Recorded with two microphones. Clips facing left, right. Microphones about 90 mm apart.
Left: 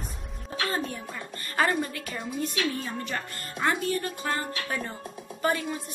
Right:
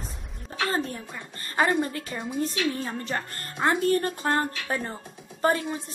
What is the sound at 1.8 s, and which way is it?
A woman's voice, 30° right (ahead or behind).